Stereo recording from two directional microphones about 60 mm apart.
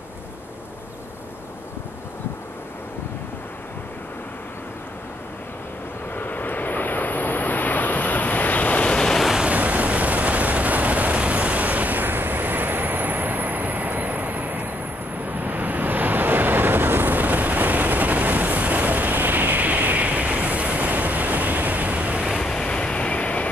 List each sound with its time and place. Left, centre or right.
6.1 s vehicle: left; by 9.2 s centre
9.4 s vehicle: right
22.4 s vehicle: centre